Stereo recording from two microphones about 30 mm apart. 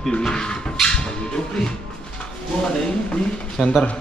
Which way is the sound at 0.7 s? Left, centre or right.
Left.